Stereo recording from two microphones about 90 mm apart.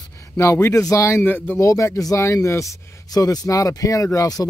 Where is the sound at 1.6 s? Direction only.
35° left (ahead or behind).